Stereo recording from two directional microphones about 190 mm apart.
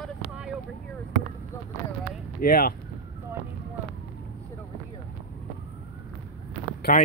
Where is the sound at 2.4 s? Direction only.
50° left (ahead or behind).